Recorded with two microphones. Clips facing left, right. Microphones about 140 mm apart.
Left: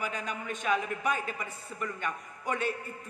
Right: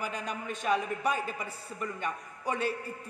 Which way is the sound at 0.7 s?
Centre (ahead or behind).